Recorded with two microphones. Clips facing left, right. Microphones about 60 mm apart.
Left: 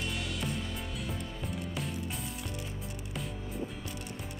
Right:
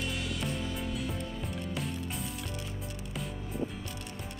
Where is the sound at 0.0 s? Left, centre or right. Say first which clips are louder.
Right 1 dB; centre.